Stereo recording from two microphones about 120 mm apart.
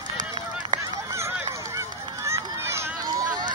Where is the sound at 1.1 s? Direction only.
25° right (ahead or behind).